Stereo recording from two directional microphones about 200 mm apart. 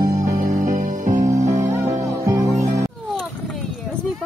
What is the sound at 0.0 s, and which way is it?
Music, 40° right (ahead or behind).